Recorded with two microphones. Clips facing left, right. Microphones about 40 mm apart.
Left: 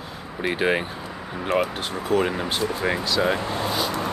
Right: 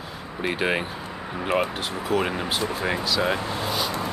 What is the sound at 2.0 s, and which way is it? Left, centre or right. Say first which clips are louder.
Speech: left 2 dB; centre.